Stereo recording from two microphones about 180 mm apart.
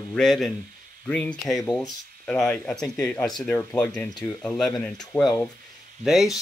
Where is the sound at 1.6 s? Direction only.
20° left (ahead or behind).